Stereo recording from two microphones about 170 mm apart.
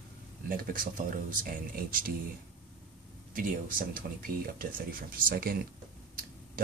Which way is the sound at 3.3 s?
55° right (ahead or behind).